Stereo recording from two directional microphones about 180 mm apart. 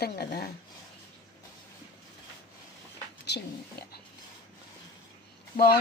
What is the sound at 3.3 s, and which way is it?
Speech, 70° left (ahead or behind).